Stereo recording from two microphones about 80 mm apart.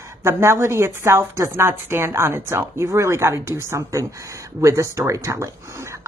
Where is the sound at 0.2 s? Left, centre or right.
Right.